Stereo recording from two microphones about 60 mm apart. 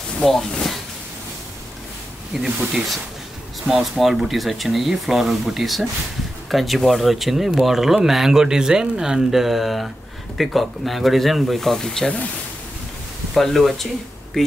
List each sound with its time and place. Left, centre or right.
0.2 s speech: centre
2.3 s speech: centre
3.7 s speech: right
4.0 s speech: centre
13.3 s speech: centre